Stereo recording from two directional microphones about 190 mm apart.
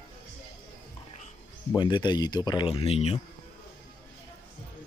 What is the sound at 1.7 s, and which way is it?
Speech, 25° left (ahead or behind).